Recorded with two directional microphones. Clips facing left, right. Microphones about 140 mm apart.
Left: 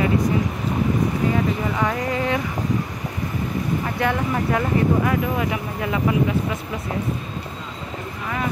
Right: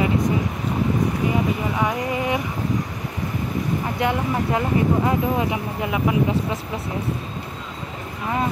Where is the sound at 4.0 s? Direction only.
20° right (ahead or behind).